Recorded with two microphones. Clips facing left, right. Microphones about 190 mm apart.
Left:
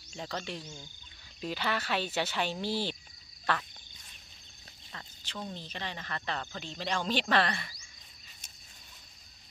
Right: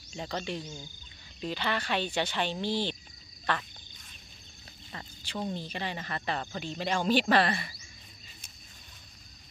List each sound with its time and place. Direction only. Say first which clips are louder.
0.1 s speech: right 3 dB; centre (ahead or behind)
4.9 s speech: right 5 dB; 10° right (ahead or behind)